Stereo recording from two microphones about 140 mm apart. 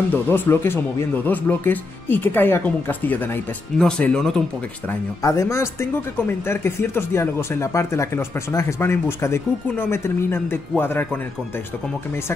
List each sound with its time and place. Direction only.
0.1 s speech: 15° left (ahead or behind)
5.2 s speech: 20° left (ahead or behind)